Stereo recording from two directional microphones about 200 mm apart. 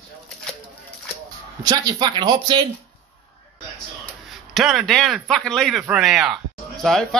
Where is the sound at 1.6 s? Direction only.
20° right (ahead or behind).